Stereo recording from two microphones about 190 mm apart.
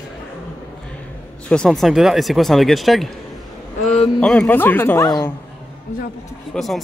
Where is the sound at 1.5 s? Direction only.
5° left (ahead or behind).